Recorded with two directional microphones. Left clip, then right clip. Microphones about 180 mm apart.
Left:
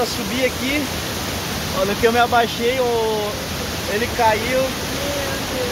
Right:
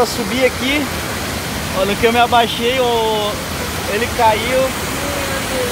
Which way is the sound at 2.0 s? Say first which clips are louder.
Right 3 dB; centre (ahead or behind).